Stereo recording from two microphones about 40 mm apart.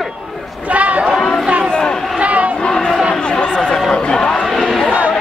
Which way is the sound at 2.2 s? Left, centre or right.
Right.